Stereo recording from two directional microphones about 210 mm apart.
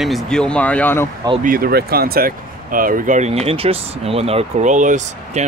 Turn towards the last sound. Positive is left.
turn(degrees=-35)  # may be behind; listen again after turning